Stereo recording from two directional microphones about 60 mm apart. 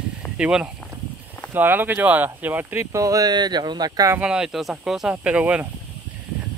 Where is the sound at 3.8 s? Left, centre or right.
Right.